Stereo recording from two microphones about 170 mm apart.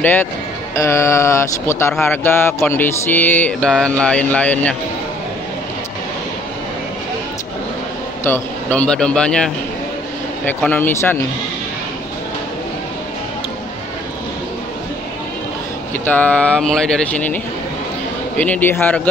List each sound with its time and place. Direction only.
0.0 s mantra: 10° left (ahead or behind)
8.2 s mantra: 10° left (ahead or behind)
16.1 s mantra: 10° left (ahead or behind)
18.4 s mantra: 10° left (ahead or behind)